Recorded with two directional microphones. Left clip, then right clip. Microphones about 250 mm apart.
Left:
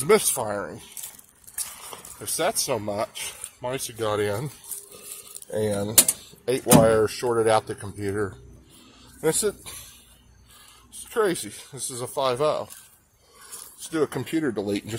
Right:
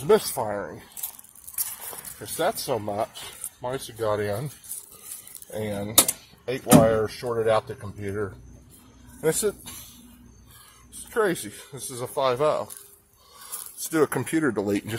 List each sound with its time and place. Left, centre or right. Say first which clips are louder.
0.0 s speech: left 1 dB; centre
2.2 s speech: left 1 dB; centre
5.5 s speech: left 5 dB; left; by 9.8 s centre
11.1 s speech: even; centre
13.8 s speech: right 3 dB; centre